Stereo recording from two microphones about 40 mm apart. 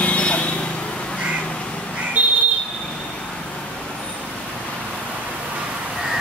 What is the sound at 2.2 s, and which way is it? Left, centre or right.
Smoke detector, right.